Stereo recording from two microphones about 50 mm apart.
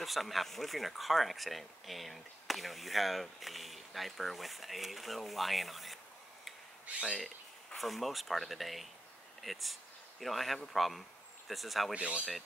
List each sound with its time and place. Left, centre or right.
0.0 s speech: centre
6.9 s speech: centre
7.7 s speech: centre
11.9 s speech: right